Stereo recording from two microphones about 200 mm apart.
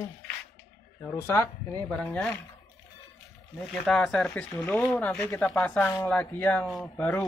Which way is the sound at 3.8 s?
5° left (ahead or behind).